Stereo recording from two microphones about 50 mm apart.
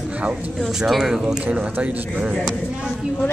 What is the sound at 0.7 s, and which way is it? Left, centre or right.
Speech, centre.